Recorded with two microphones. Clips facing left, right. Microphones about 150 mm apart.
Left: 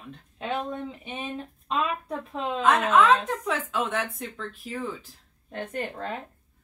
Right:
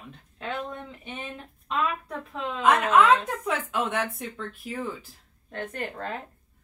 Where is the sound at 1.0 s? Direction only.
15° left (ahead or behind).